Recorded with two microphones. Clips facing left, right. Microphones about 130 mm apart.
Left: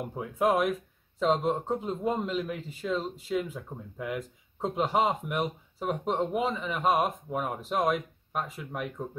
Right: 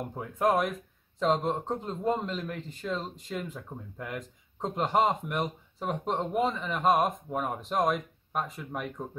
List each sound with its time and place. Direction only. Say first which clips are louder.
0.1 s a man's voice: even; 5° left (ahead or behind)